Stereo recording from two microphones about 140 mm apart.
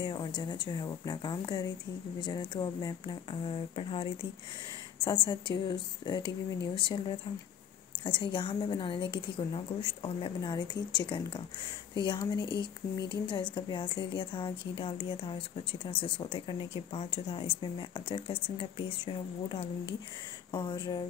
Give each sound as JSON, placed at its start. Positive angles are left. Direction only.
{"t": 0.0, "sound": "a woman's voice", "side_deg": 30}
{"t": 3.4, "sound": "speech", "side_deg": 40}